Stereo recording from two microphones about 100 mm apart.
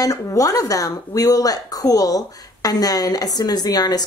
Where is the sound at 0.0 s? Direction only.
35° left (ahead or behind).